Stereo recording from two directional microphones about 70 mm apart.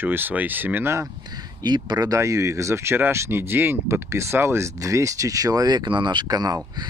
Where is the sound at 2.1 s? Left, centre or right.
Right.